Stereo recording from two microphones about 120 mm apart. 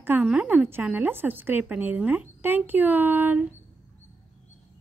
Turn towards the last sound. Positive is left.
turn(degrees=-15)  # may be behind; listen again after turning